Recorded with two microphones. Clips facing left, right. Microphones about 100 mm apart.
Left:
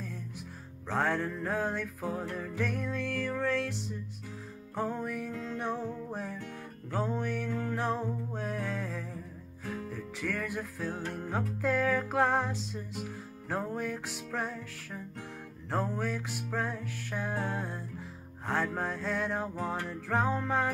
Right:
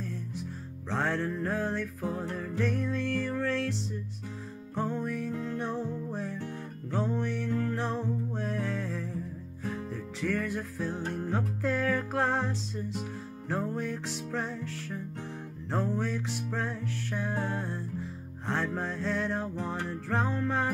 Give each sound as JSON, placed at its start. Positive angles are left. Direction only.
{"t": 0.0, "sound": "music", "side_deg": 10}
{"t": 4.7, "sound": "music", "side_deg": 5}
{"t": 5.3, "sound": "music", "side_deg": -15}
{"t": 5.6, "sound": "music", "side_deg": 10}
{"t": 10.2, "sound": "music", "side_deg": 5}